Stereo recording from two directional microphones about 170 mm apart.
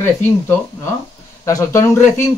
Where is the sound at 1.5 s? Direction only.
20° left (ahead or behind).